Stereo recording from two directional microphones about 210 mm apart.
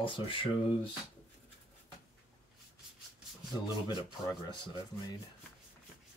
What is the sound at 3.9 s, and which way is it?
Speech, 20° left (ahead or behind).